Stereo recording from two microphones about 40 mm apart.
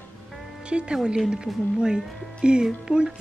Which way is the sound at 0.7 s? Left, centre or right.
Right.